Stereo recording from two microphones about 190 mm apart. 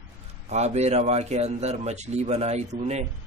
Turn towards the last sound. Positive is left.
turn(degrees=-35)  # may be behind; listen again after turning